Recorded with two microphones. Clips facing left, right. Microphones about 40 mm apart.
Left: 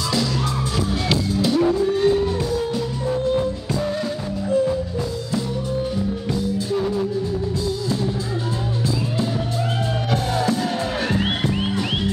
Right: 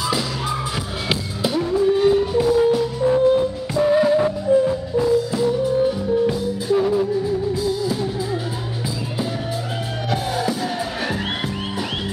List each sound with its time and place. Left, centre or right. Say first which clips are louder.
1.0 s music: left 1 dB; centre
10.1 s music: even; centre